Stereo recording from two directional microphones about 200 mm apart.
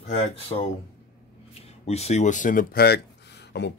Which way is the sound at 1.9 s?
35° left (ahead or behind).